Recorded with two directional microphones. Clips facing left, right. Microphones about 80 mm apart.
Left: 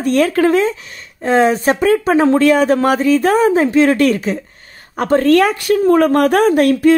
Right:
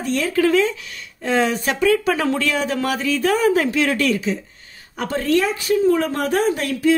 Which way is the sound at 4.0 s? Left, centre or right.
Left.